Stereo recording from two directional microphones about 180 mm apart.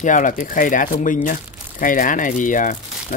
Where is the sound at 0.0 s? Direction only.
45° left (ahead or behind).